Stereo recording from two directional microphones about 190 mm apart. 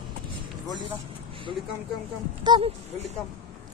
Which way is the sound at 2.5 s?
30° right (ahead or behind).